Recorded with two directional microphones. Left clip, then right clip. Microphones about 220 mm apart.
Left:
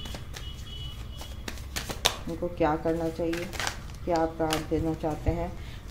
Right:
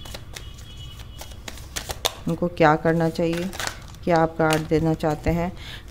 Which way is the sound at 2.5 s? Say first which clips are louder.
Right 9 dB; 45° right (ahead or behind).